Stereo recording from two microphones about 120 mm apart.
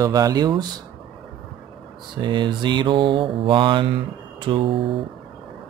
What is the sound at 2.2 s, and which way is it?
Mantra, 40° right (ahead or behind).